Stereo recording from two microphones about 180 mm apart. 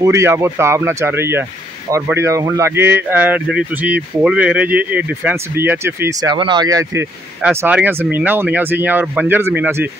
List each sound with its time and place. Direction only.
0.0 s speech: 15° right (ahead or behind)